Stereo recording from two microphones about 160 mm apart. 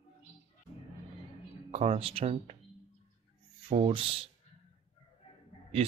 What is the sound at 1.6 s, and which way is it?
Speech, 40° right (ahead or behind).